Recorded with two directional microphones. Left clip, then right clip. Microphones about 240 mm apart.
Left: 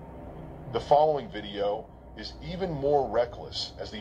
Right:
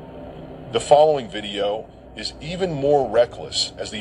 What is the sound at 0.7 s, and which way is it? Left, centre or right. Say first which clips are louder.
A man's voice: right 8 dB; right.